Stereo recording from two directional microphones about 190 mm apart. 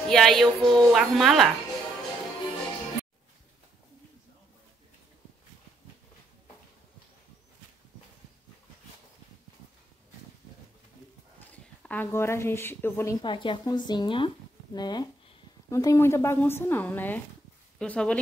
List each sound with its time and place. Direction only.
0.1 s a woman's voice: centre (ahead or behind)
11.5 s speech: 10° left (ahead or behind)
13.2 s speech: 25° left (ahead or behind); by 18.2 s 5° left (ahead or behind)